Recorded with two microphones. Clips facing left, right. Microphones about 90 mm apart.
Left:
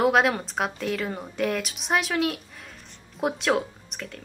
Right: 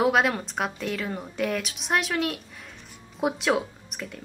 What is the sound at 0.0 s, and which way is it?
A woman's voice, centre (ahead or behind).